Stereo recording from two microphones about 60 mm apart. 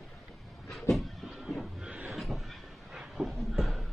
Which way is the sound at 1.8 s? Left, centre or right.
Centre.